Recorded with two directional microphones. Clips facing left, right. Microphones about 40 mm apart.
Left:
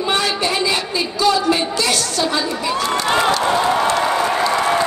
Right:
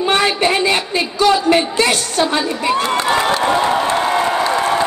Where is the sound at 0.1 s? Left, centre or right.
Right.